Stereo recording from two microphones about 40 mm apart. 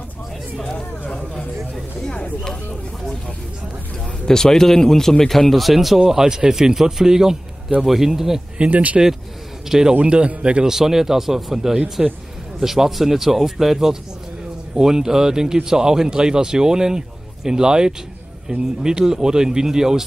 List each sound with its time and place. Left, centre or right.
0.7 s a sound: left
2.4 s speech: centre
4.3 s speech: centre
5.9 s speech: centre
8.5 s speech: right
9.7 s speech: centre
9.9 s a man's voice: right
10.7 s speech: centre